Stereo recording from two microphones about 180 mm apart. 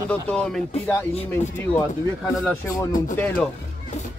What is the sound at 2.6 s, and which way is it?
Speech, 15° left (ahead or behind).